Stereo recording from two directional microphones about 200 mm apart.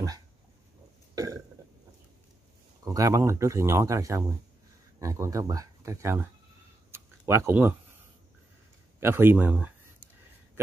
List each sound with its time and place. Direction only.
1.1 s burping: 15° right (ahead or behind)
2.8 s speech: 15° right (ahead or behind)
6.9 s a sound: 10° right (ahead or behind)
9.0 s speech: 10° right (ahead or behind)